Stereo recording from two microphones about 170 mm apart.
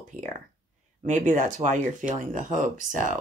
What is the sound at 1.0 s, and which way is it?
Speech, 45° right (ahead or behind).